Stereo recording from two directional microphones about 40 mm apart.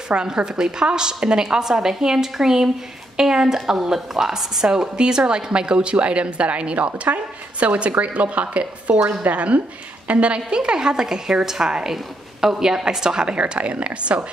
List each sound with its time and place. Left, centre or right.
0.4 s a woman's voice: right
10.5 s a woman's voice: right